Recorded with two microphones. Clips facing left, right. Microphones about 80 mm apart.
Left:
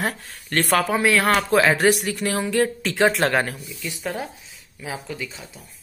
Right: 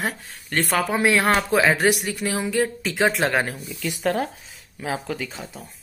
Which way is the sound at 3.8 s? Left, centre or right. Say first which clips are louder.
Right 6 dB; right.